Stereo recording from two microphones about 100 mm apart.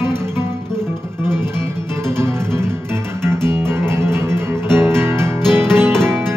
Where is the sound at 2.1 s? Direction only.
25° right (ahead or behind).